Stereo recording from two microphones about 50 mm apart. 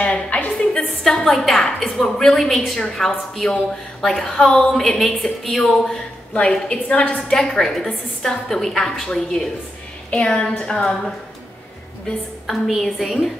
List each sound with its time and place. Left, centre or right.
0.0 s a sound: left
1.0 s a woman's voice: centre
6.7 s a woman's voice: left
12.4 s a woman's voice: centre